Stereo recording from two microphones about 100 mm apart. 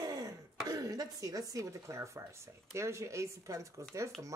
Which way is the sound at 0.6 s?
40° right (ahead or behind).